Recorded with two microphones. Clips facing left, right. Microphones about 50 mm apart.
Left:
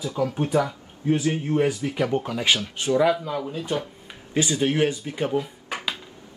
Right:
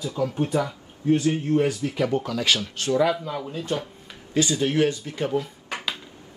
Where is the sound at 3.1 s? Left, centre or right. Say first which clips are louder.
Left 2 dB; centre.